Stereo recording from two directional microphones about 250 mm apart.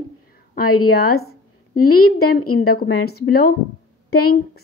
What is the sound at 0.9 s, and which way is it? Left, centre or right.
A woman's voice, left.